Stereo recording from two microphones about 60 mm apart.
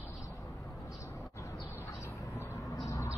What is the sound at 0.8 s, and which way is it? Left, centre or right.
Vehicle, left.